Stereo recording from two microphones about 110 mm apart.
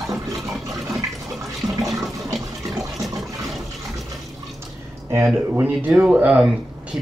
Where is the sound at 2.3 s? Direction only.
Centre (ahead or behind).